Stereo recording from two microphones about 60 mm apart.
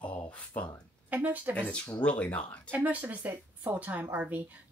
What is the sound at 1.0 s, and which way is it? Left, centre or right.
Speech, right.